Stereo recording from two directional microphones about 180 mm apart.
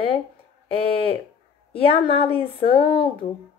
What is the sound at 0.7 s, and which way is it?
Speech, 30° left (ahead or behind).